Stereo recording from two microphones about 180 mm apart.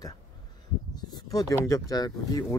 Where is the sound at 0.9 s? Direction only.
20° left (ahead or behind).